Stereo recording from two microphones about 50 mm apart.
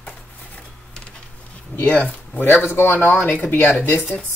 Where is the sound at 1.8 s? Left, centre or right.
Left.